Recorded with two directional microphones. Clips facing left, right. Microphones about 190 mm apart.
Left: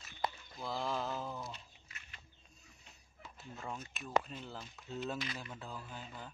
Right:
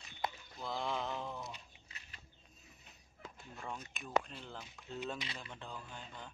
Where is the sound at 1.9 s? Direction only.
35° right (ahead or behind).